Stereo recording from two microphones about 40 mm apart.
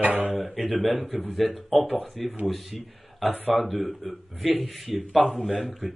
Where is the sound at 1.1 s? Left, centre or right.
Centre.